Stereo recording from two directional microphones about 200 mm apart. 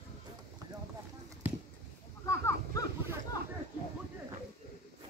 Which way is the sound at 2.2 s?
15° left (ahead or behind).